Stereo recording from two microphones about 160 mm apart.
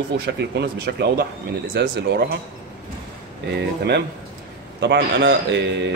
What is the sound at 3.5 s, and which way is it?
Speech, 90° right.